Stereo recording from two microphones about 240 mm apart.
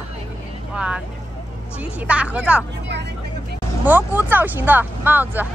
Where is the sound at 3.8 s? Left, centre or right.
Centre.